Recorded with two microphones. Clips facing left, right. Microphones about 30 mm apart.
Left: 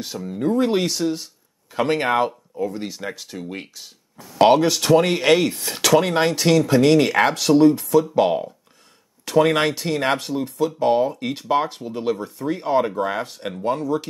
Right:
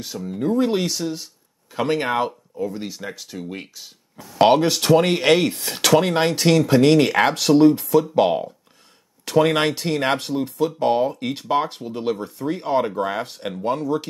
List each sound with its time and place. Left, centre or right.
0.0 s speech: centre